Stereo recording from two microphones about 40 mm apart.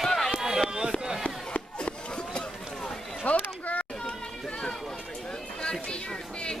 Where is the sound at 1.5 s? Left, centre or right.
Left.